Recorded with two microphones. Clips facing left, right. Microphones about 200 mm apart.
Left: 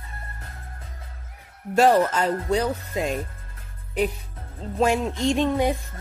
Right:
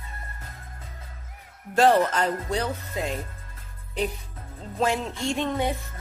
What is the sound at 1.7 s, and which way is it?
Speech, 10° left (ahead or behind).